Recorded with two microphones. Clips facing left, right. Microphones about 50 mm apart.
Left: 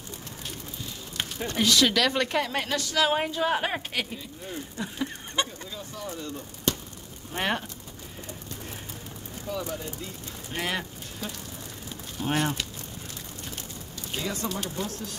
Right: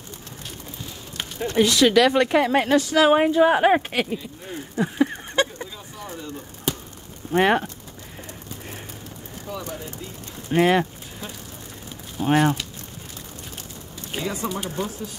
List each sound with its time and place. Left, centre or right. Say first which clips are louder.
1.5 s speech: right 6 dB; centre
4.7 s a sound: right 12 dB; right
5.3 s fowl: right 7 dB; right
7.3 s speech: right 10 dB; right
9.5 s speech: left 1 dB; centre
10.5 s speech: right 13 dB; right
12.2 s speech: right 8 dB; centre
14.1 s speech: right 4 dB; centre